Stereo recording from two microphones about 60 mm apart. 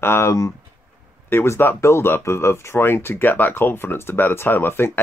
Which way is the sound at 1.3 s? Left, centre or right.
Left.